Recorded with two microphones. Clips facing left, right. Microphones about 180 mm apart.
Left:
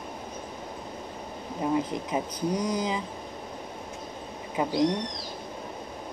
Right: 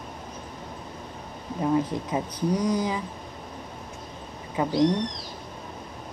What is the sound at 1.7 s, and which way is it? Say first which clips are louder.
Speech: right 2 dB; 20° left (ahead or behind).